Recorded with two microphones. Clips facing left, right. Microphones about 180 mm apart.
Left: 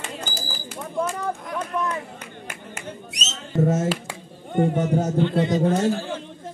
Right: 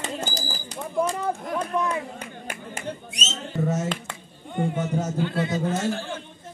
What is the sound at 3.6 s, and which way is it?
A man's voice, 50° left (ahead or behind).